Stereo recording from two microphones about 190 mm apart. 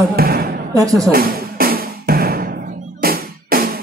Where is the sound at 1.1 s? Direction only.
50° right (ahead or behind).